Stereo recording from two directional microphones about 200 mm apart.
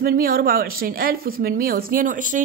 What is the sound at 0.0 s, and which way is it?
Speech, 45° right (ahead or behind).